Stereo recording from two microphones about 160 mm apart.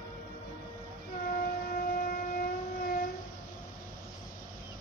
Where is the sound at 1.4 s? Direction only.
65° left (ahead or behind).